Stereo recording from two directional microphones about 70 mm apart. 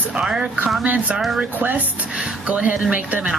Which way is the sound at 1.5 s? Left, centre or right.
Right.